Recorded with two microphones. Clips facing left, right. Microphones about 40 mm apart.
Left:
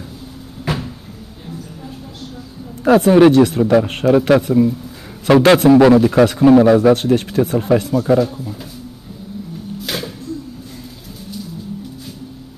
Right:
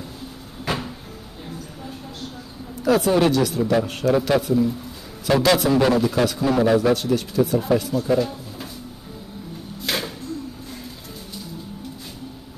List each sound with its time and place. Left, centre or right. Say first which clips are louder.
0.7 s cupboard open or close: left 3 dB; centre
2.8 s speech: left 8 dB; left
9.8 s a sound: even; centre